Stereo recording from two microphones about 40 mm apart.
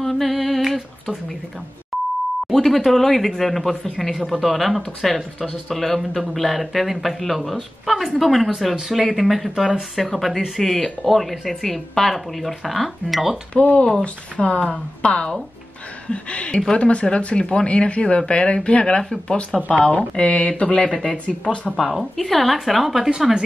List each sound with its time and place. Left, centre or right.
0.0 s a sound: centre
0.6 s humming: centre
1.9 s beep: centre
2.4 s speech: centre
13.5 s speech: left
14.4 s speech: centre
14.7 s speech: left
19.5 s speech: centre
19.9 s speech: left
21.7 s speech: centre